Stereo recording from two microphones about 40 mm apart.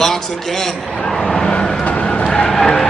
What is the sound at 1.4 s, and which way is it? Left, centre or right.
Vehicle, left.